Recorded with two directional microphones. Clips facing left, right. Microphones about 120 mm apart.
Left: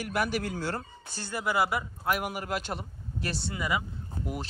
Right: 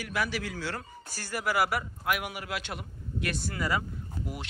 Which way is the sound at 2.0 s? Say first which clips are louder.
Left 2 dB; 40° left (ahead or behind).